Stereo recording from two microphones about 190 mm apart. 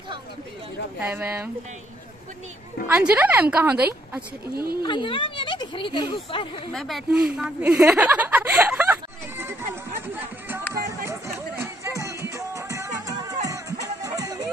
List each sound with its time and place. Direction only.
0.9 s a woman's voice: 10° right (ahead or behind)
2.9 s a woman's voice: 10° right (ahead or behind)
4.8 s speech: 25° left (ahead or behind)
6.7 s speech: centre (ahead or behind)
7.3 s a sound: 5° right (ahead or behind)
10.7 s music: 15° right (ahead or behind)